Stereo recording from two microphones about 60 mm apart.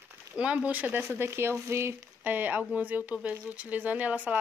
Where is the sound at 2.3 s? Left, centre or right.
Right.